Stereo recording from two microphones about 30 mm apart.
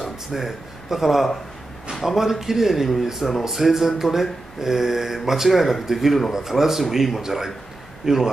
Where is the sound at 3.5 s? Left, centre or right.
Centre.